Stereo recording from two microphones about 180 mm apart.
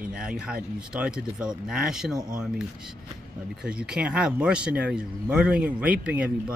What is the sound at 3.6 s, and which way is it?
Speech, 5° right (ahead or behind).